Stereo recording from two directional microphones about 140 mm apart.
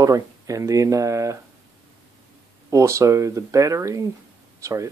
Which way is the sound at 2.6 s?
20° right (ahead or behind).